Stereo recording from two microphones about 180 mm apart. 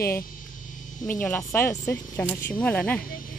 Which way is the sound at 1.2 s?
15° left (ahead or behind).